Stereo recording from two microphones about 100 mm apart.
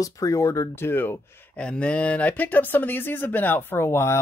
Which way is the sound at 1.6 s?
10° left (ahead or behind).